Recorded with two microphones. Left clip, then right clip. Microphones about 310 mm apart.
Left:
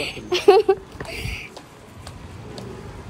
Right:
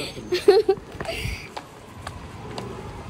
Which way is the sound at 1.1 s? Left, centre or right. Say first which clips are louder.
Right 1 dB; centre.